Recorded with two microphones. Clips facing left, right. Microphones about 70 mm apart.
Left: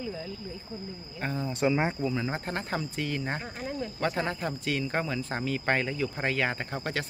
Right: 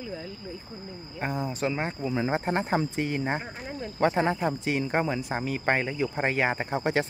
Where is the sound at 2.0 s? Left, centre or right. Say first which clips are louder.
Right 4 dB; right.